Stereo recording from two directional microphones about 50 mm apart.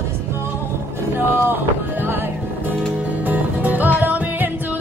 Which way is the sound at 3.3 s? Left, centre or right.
Right.